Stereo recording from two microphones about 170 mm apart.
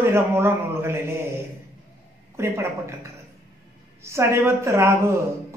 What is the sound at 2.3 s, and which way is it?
A woman's voice, 15° right (ahead or behind).